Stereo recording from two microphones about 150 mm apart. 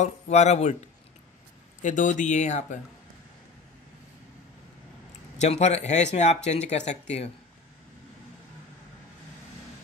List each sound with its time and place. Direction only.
0.0 s speech: 50° left (ahead or behind)
5.4 s speech: 45° left (ahead or behind)